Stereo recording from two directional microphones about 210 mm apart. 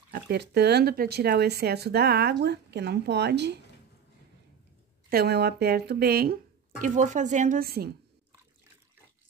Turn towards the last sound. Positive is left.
turn(degrees=-45)  # may be behind; listen again after turning